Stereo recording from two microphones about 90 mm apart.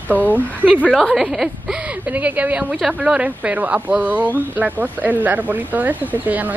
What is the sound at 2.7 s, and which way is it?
Speech, 5° right (ahead or behind).